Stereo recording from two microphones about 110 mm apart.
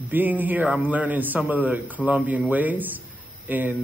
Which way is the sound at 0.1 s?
15° right (ahead or behind).